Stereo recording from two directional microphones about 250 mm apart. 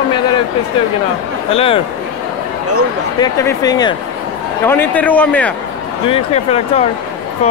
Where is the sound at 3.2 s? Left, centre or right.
Centre.